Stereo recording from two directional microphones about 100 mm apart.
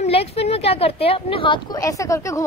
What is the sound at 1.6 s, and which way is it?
Speech, 35° left (ahead or behind).